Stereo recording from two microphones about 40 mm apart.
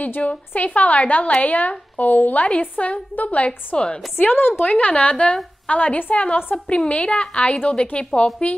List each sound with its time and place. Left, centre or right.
0.0 s a woman's voice: left
4.2 s speech: left
4.6 s a woman's voice: left
5.1 s a woman's voice: left
5.7 s a woman's voice: left